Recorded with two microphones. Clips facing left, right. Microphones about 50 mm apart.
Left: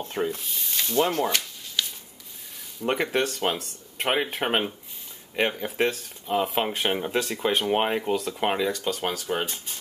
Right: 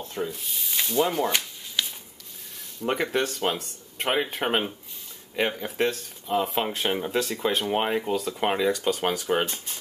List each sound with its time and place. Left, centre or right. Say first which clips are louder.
0.0 s speech: left 3 dB; left
0.4 s speech: even; centre
1.0 s speech: left 1 dB; centre
1.8 s a sound: even; centre
2.8 s speech: left 1 dB; centre
9.1 s speech: right 3 dB; centre